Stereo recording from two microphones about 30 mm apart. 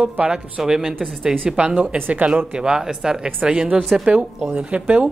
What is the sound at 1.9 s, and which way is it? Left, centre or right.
Speech, right.